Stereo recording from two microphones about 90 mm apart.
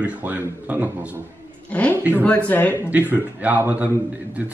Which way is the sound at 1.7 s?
15° left (ahead or behind).